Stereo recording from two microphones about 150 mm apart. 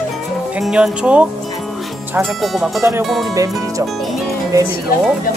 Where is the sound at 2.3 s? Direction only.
Centre (ahead or behind).